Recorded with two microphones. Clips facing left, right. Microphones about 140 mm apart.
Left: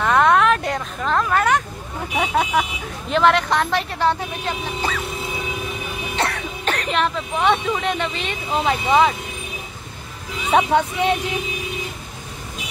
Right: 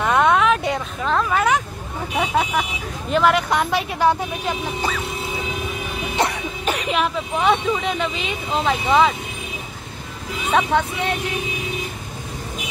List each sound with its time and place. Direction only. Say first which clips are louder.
0.0 s vehicle: left 1 dB; 5° right (ahead or behind)
2.1 s speech: left 1 dB; centre (ahead or behind)
6.1 s speech: right 2 dB; 15° right (ahead or behind); by 9.1 s centre (ahead or behind)
10.5 s speech: left 2 dB; 15° left (ahead or behind)